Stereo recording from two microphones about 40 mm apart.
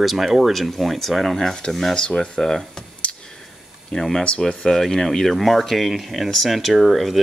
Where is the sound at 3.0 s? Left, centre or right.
Left.